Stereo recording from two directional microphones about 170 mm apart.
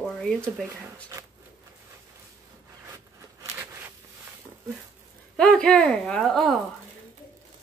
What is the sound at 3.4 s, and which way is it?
Zipper, 15° right (ahead or behind).